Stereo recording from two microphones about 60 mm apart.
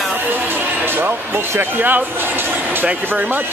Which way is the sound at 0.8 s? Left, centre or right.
Right.